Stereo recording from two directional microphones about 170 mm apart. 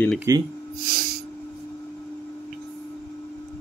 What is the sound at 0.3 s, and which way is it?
Speech, 20° right (ahead or behind).